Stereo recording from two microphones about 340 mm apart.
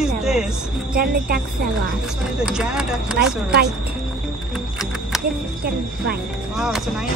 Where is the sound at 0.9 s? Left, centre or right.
Right.